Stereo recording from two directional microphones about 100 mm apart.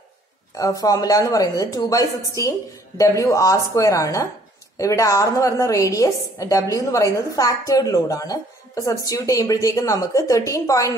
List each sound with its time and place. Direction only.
0.6 s a woman's voice: 40° left (ahead or behind)